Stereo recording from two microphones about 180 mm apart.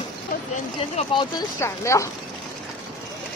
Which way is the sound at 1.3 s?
15° left (ahead or behind).